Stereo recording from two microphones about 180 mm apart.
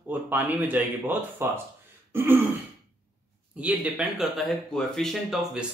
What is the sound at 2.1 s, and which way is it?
Throat clearing, 10° right (ahead or behind).